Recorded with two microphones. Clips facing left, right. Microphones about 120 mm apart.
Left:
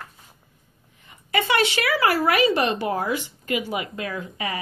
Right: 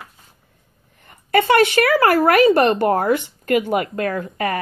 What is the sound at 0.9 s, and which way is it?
A woman's voice, 50° right (ahead or behind).